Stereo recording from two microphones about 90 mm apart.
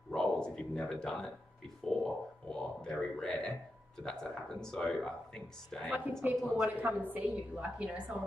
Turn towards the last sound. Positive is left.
turn(degrees=-15)  # may be behind; listen again after turning